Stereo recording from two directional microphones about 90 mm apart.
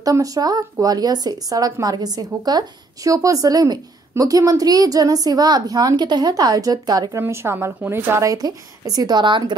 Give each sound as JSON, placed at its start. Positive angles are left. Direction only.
{"t": 0.0, "sound": "speech", "side_deg": -40}
{"t": 7.2, "sound": "a woman's voice", "side_deg": -30}
{"t": 8.2, "sound": "speech", "side_deg": -40}